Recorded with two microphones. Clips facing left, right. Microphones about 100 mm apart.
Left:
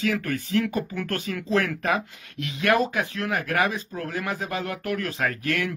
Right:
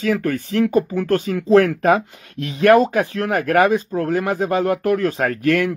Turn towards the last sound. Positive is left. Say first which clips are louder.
# right 8 dB
turn(degrees=-40)  # may be behind; listen again after turning